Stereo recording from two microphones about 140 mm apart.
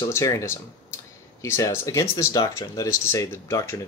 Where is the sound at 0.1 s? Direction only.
20° left (ahead or behind).